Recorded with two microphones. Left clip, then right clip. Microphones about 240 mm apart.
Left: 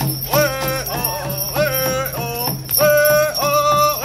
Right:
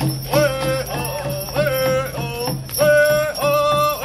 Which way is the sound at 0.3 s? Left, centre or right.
Left.